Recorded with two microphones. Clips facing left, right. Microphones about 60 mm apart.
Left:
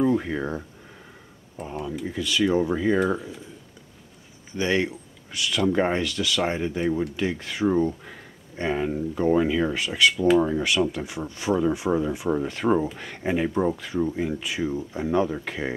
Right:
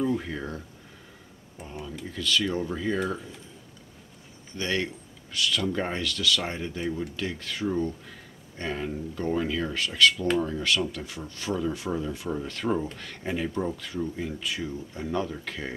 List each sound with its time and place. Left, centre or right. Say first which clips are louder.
0.0 s speech: left 5 dB; centre
1.6 s speech: left 7 dB; centre
2.0 s speech: left 4 dB; centre
4.6 s speech: left 5 dB; centre